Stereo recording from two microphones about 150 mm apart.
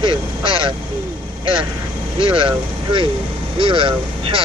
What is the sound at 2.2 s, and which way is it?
Speech, 35° right (ahead or behind).